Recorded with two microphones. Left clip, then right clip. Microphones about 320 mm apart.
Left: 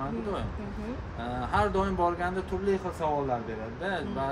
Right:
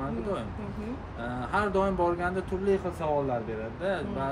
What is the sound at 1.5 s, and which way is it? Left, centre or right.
Speech, centre.